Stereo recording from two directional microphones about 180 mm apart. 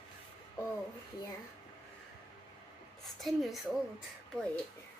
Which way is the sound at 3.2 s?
Centre (ahead or behind).